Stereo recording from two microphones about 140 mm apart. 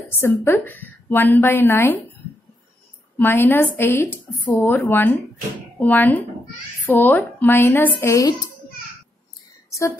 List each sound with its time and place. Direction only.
0.2 s a woman's voice: 15° left (ahead or behind)
3.2 s a woman's voice: 15° left (ahead or behind)
9.7 s a sound: 20° left (ahead or behind)